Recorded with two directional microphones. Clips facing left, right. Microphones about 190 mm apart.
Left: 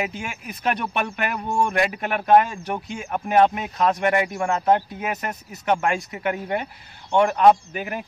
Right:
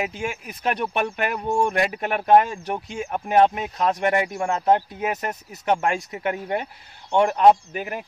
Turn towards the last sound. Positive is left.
turn(degrees=-25)  # may be behind; listen again after turning